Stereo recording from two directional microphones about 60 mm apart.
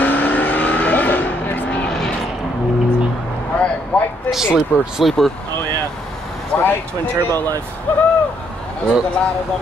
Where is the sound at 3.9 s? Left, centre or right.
Left.